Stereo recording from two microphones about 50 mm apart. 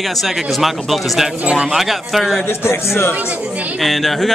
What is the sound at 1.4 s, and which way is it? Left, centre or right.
Speech, centre.